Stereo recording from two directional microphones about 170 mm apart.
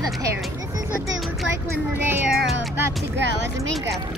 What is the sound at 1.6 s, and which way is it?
Speech, 15° right (ahead or behind).